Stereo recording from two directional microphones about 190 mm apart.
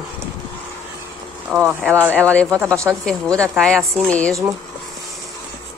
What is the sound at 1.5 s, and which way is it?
Speech, 5° left (ahead or behind).